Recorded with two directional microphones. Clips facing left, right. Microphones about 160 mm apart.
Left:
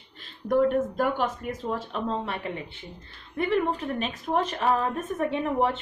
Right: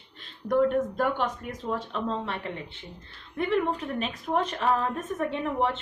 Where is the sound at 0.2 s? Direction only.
5° left (ahead or behind).